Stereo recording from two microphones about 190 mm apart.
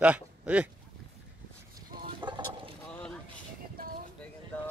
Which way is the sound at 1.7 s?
25° right (ahead or behind).